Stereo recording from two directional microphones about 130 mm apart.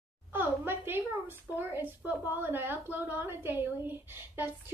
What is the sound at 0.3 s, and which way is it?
A woman's voice, 15° right (ahead or behind).